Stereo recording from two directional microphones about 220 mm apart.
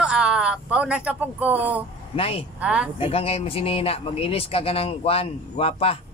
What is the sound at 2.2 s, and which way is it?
Speech, 25° left (ahead or behind).